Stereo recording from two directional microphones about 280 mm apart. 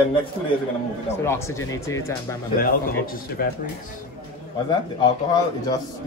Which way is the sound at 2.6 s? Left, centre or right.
Left.